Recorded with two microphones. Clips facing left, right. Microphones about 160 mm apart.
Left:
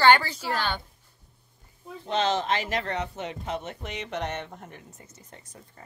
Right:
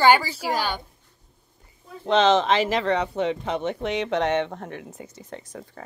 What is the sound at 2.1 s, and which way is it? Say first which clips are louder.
Speech: right 7 dB; 90° right.